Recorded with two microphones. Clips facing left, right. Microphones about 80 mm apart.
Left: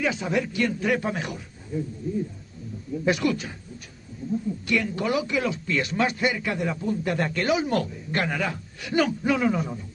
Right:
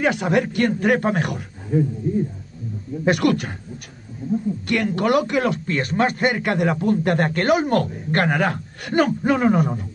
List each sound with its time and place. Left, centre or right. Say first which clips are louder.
0.0 s a man's voice: right 6 dB; right
4.6 s speech: right 5 dB; right